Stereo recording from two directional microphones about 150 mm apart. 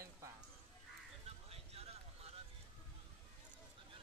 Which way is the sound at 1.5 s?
40° right (ahead or behind).